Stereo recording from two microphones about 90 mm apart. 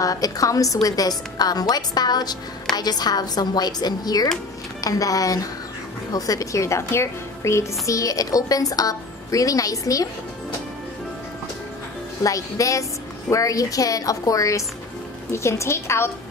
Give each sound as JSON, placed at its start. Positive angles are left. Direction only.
{"t": 0.0, "sound": "a woman's voice", "side_deg": 40}
{"t": 12.2, "sound": "a woman's voice", "side_deg": 40}